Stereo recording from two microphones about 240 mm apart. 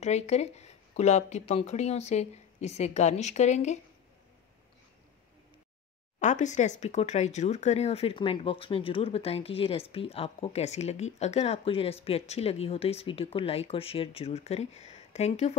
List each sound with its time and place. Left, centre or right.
0.0 s speech: left
6.1 s speech: left